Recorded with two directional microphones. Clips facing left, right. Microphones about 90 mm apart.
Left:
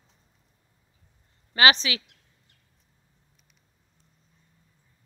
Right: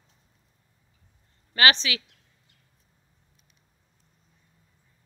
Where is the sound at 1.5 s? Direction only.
20° left (ahead or behind).